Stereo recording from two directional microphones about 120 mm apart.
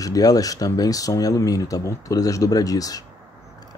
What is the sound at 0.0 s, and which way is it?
Speech, 30° left (ahead or behind).